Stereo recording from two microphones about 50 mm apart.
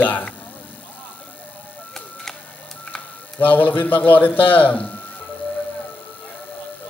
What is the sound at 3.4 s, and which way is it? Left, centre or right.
A man's voice, left.